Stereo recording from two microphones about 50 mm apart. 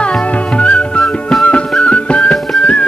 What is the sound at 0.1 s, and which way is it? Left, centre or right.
Music, left.